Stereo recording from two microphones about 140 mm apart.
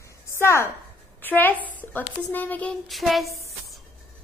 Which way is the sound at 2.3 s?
10° left (ahead or behind).